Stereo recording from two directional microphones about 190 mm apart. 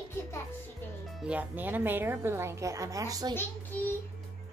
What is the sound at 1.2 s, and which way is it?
A woman's voice, 10° right (ahead or behind).